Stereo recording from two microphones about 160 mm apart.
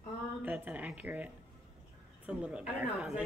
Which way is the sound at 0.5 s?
10° right (ahead or behind).